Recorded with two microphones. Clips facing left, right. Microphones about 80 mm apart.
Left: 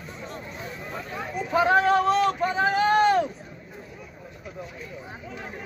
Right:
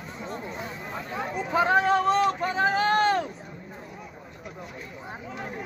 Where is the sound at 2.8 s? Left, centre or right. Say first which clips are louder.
Left 5 dB; centre.